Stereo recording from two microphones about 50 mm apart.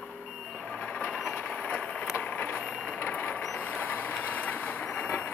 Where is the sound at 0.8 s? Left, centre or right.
Left.